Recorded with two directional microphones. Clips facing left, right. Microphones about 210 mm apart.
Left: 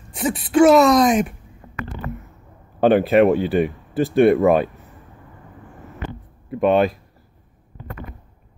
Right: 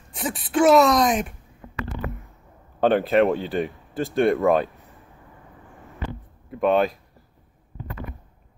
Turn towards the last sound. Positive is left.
turn(degrees=0)  # may be behind; listen again after turning